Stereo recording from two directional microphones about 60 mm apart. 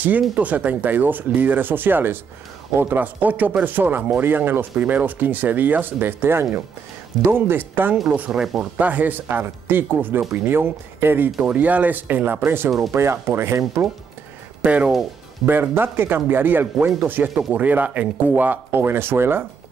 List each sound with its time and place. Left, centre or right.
0.4 s speech: right
8.3 s speech: centre
8.7 s speech: right
14.6 s speech: right
15.4 s speech: right